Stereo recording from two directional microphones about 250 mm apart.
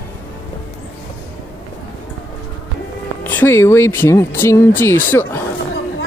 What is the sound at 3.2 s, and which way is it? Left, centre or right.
Speech, centre.